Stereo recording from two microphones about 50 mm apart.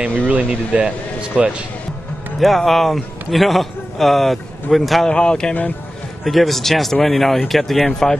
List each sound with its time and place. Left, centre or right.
0.3 s speech: right
2.4 s speech: centre
5.0 s speech: centre
6.2 s speech: centre